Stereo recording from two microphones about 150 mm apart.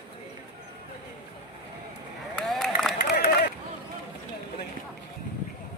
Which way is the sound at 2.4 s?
Centre (ahead or behind).